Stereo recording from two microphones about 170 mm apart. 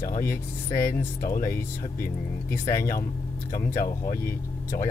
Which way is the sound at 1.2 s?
55° left (ahead or behind).